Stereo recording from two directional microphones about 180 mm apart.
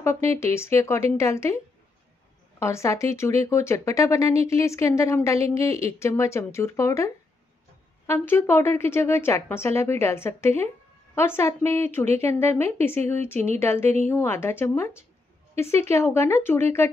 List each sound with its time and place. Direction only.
0.0 s speech: 15° left (ahead or behind)
2.6 s speech: 15° left (ahead or behind)
5.7 s speech: 35° right (ahead or behind)
5.9 s speech: 15° left (ahead or behind)
8.1 s speech: 10° left (ahead or behind)